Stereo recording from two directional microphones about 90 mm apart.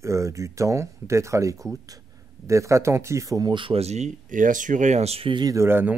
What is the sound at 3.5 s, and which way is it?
Speech, 70° right (ahead or behind).